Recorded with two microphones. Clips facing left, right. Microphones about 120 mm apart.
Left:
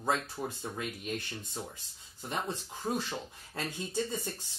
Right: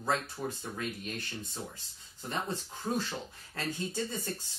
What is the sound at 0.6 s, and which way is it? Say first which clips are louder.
Speech: even; 20° left (ahead or behind).